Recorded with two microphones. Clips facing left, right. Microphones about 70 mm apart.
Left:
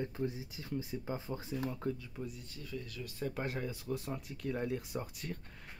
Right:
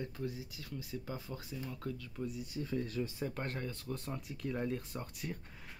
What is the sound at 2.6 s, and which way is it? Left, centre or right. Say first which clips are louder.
Speech: right 6 dB; right.